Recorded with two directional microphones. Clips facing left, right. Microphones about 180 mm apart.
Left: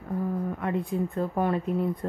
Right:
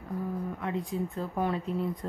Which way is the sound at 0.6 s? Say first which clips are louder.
Left 4 dB; 55° left (ahead or behind).